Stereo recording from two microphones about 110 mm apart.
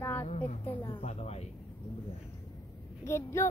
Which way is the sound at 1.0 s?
75° left (ahead or behind).